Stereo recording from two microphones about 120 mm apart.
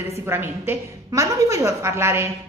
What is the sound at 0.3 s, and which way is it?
A woman's voice, 20° right (ahead or behind).